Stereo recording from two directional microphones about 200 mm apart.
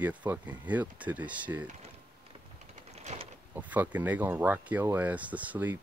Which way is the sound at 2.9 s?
35° right (ahead or behind).